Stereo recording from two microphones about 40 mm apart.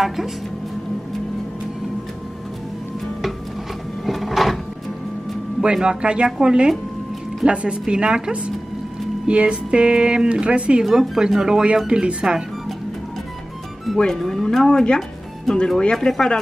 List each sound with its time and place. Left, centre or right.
4.0 s a sound: centre
5.6 s speech: right
10.8 s speech: centre
11.9 s speech: right
13.9 s speech: centre
15.8 s speech: left